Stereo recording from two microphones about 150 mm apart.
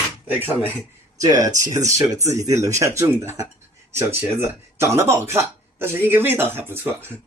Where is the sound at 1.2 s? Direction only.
25° right (ahead or behind).